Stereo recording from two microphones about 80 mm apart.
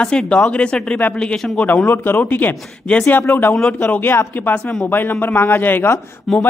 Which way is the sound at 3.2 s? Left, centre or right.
Left.